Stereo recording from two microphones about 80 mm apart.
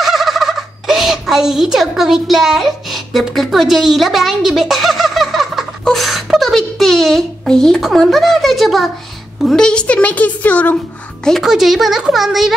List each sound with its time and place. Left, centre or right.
0.0 s fowl: centre
5.9 s a child's voice: centre
11.2 s a child's voice: centre